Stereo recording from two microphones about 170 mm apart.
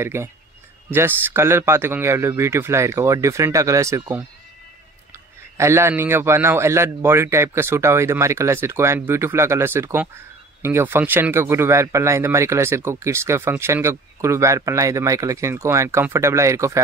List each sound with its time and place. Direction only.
0.0 s a man's voice: 15° right (ahead or behind)
5.6 s a man's voice: 15° right (ahead or behind)